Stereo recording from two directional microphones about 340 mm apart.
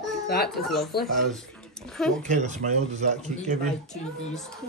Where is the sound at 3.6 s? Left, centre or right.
Centre.